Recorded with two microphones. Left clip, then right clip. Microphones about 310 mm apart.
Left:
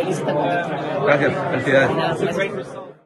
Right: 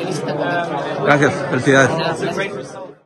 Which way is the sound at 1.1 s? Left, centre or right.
Centre.